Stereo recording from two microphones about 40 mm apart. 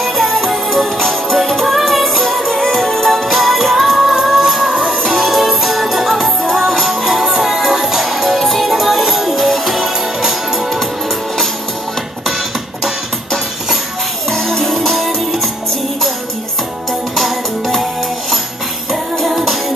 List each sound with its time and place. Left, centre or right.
0.0 s music: centre
14.3 s music: centre
17.1 s music: centre
18.9 s music: centre